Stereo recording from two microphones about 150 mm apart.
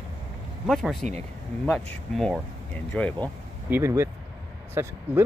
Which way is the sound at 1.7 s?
5° left (ahead or behind).